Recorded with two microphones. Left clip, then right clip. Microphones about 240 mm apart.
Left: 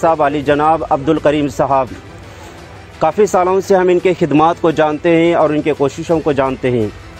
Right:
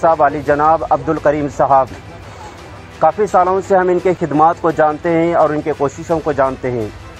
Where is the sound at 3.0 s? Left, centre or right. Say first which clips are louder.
Even; left.